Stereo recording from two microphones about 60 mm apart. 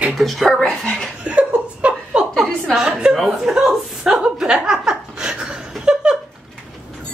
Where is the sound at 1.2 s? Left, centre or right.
Right.